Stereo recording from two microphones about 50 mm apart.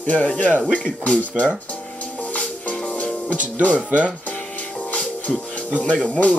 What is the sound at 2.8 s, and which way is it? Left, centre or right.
Music, left.